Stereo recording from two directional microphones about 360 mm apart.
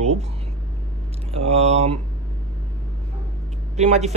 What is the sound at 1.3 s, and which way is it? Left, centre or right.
Speech, centre.